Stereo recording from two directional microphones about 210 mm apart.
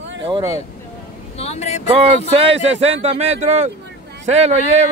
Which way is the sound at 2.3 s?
30° right (ahead or behind).